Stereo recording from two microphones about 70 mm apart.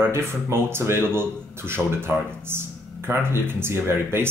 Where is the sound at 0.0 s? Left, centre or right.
Right.